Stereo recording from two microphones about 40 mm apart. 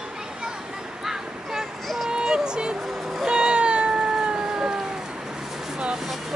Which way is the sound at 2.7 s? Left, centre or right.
Centre.